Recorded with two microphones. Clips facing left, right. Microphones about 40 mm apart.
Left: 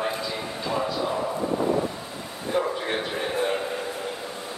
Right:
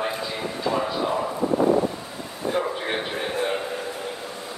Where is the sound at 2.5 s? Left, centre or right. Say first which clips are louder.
Left 1 dB; centre.